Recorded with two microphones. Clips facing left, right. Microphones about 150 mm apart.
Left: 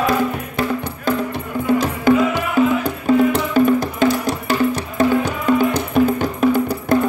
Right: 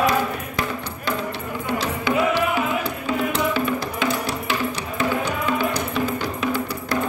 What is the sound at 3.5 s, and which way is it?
Music, 45° left (ahead or behind).